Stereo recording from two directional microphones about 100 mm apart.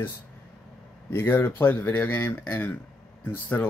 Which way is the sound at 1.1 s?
20° left (ahead or behind).